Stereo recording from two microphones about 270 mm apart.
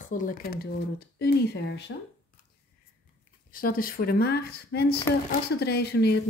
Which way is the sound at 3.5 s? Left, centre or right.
Left.